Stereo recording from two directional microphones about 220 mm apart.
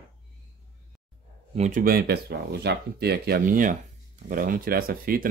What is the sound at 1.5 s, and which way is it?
Speech, 35° right (ahead or behind).